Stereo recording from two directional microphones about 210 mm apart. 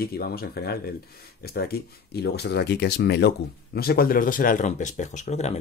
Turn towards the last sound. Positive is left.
turn(degrees=30)  # may be behind; listen again after turning